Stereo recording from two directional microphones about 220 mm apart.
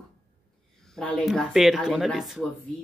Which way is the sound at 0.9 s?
Centre (ahead or behind).